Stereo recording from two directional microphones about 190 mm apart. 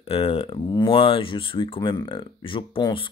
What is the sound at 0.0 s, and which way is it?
Speech, 30° left (ahead or behind).